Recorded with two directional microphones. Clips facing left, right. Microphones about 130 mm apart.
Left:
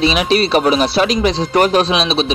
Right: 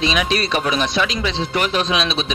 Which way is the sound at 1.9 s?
30° left (ahead or behind).